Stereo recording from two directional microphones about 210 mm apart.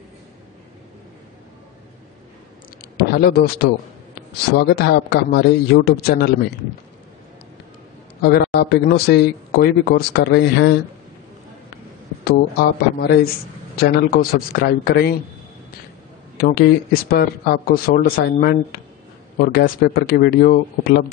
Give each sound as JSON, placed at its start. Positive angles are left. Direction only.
{"t": 3.0, "sound": "a man's voice", "side_deg": 50}
{"t": 8.2, "sound": "speech", "side_deg": 50}
{"t": 12.3, "sound": "speech", "side_deg": 50}
{"t": 16.3, "sound": "speech", "side_deg": 45}